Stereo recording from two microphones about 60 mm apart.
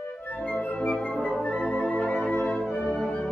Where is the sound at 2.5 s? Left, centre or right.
Centre.